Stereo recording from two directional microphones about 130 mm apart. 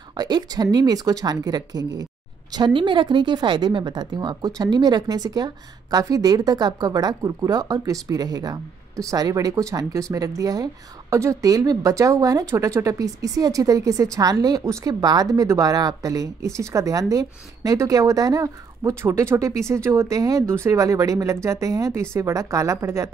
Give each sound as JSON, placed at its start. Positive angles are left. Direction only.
{"t": 0.1, "sound": "speech", "side_deg": -35}